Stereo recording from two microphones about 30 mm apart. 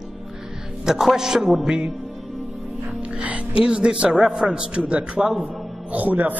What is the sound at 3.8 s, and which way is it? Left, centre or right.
Speech, right.